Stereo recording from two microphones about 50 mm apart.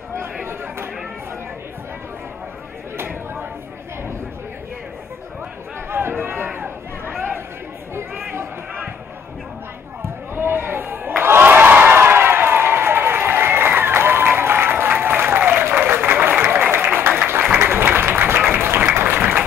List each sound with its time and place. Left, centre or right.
0.2 s chatter: right
3.0 s a sound: right
5.9 s chatter: right
10.3 s crowd: right
15.7 s applause: right